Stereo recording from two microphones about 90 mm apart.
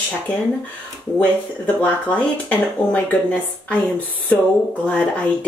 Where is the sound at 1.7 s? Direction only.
15° left (ahead or behind).